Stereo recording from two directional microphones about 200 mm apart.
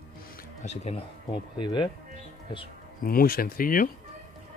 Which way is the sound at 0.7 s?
30° left (ahead or behind).